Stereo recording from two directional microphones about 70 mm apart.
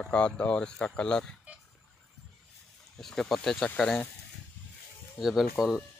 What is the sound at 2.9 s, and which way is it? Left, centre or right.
Speech, centre.